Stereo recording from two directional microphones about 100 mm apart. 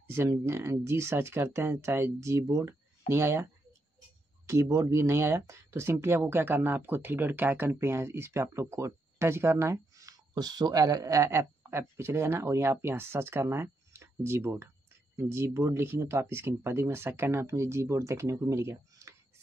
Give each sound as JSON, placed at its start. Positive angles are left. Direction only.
{"t": 0.0, "sound": "speech", "side_deg": -25}
{"t": 4.5, "sound": "speech", "side_deg": -30}